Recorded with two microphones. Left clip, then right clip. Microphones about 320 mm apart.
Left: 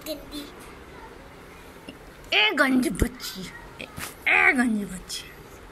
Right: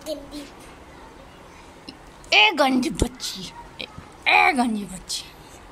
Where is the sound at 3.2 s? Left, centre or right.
Centre.